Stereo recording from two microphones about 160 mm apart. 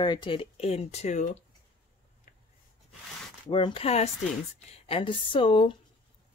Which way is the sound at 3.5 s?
30° left (ahead or behind).